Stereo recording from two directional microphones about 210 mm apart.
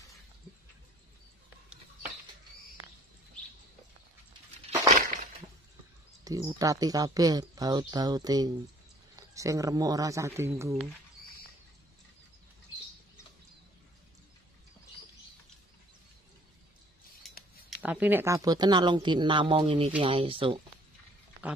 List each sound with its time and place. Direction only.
4.6 s crushing: 35° right (ahead or behind)
6.2 s speech: 15° right (ahead or behind)
17.8 s speech: 10° right (ahead or behind); by 20.6 s 25° right (ahead or behind)